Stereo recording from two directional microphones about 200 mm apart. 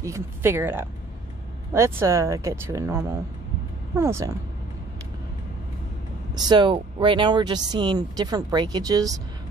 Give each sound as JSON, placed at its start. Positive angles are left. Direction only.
{"t": 0.0, "sound": "speech", "side_deg": -15}
{"t": 6.4, "sound": "speech", "side_deg": -25}